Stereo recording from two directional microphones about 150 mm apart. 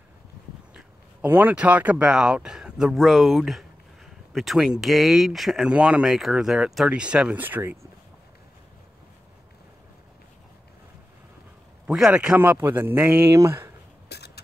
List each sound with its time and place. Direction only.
0.7 s speech: 15° right (ahead or behind)
11.8 s a man's voice: 5° right (ahead or behind)
14.0 s a sound: 90° left